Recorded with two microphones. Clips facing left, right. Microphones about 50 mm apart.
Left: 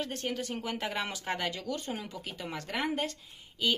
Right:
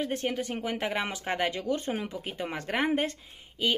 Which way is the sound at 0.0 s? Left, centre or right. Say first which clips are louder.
Right 4 dB; right.